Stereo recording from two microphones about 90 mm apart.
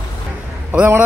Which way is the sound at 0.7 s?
20° right (ahead or behind).